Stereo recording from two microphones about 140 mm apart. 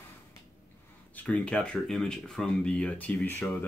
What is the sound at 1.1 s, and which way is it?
Speech, 5° left (ahead or behind).